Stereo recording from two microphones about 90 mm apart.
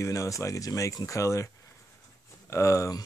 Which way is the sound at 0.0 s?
35° left (ahead or behind).